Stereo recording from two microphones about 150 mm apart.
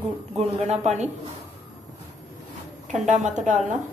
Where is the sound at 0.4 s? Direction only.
45° right (ahead or behind).